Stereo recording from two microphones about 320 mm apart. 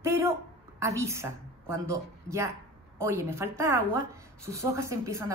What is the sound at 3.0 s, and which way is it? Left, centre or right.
Speech, centre.